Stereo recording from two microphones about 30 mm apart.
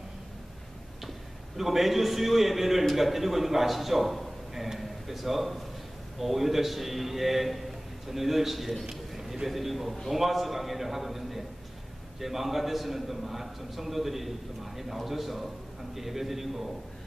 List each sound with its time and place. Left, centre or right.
1.6 s a man's voice: centre
4.6 s a sound: centre
6.1 s a man's voice: centre